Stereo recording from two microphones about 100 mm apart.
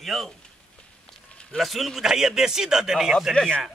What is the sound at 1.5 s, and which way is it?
A man's voice, centre (ahead or behind).